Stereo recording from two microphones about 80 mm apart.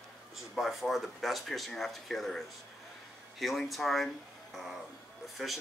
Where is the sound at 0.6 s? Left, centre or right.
Centre.